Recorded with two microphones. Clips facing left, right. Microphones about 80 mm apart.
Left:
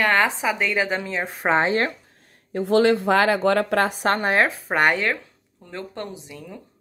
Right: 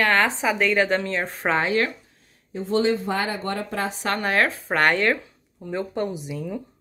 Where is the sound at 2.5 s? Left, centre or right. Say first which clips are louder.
Left 4 dB; left.